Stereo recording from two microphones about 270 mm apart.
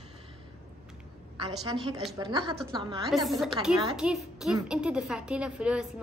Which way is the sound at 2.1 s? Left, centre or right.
Centre.